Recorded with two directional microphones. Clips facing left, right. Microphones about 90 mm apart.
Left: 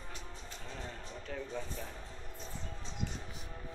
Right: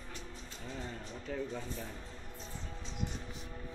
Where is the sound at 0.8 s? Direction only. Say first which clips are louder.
Right 2 dB; 5° right (ahead or behind).